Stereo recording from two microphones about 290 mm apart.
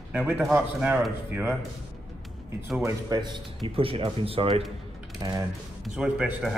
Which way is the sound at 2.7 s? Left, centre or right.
Centre.